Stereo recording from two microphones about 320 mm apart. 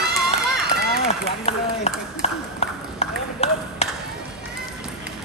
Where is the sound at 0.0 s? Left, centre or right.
Centre.